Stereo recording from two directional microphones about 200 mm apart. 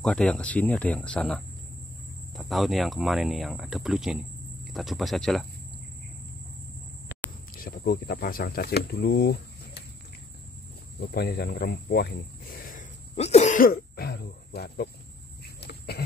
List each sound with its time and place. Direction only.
0.0 s speech: 5° left (ahead or behind)
7.5 s speech: 50° left (ahead or behind)
11.0 s speech: 55° left (ahead or behind)
13.1 s speech: 30° left (ahead or behind); by 14.9 s 55° left (ahead or behind)